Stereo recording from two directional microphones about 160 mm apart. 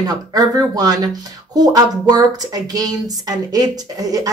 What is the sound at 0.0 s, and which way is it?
Speech, 25° right (ahead or behind).